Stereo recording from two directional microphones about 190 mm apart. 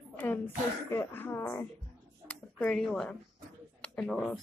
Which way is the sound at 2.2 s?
5° left (ahead or behind).